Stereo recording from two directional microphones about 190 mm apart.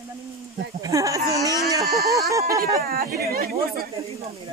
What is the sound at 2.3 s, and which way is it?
Speech, 15° right (ahead or behind).